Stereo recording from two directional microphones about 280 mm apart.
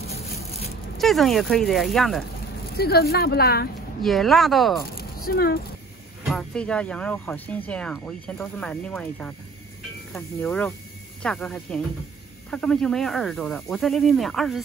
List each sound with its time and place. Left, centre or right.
0.9 s speech: centre
2.7 s speech: left
4.0 s speech: centre
4.9 s a sound: left
6.2 s speech: centre